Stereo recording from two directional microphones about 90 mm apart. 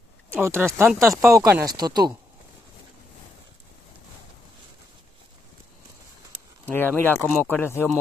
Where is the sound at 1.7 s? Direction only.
50° right (ahead or behind).